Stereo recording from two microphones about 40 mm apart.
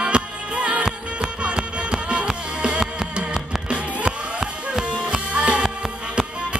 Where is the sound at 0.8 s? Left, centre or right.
Right.